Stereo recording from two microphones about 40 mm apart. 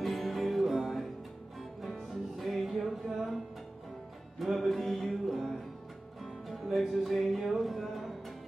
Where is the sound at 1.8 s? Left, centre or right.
Centre.